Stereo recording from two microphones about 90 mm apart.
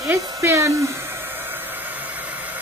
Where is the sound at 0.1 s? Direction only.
25° right (ahead or behind).